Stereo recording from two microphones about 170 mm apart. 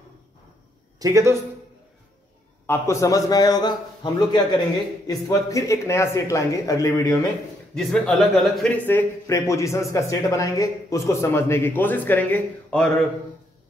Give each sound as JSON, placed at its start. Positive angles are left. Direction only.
{"t": 0.9, "sound": "a man's voice", "side_deg": -20}
{"t": 2.6, "sound": "a man's voice", "side_deg": 15}
{"t": 7.7, "sound": "speech", "side_deg": 5}